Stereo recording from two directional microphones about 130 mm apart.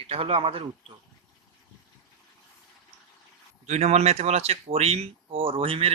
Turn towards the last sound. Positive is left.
turn(degrees=-45)  # may be behind; listen again after turning